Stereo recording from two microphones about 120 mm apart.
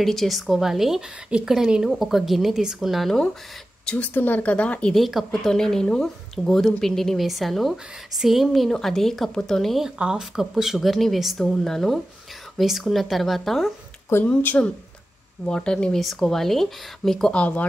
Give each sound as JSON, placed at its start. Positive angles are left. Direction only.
{"t": 0.0, "sound": "a woman's voice", "side_deg": 0}
{"t": 14.0, "sound": "a woman's voice", "side_deg": 20}